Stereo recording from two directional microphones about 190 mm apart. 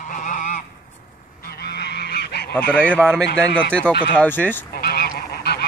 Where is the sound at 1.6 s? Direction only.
60° left (ahead or behind).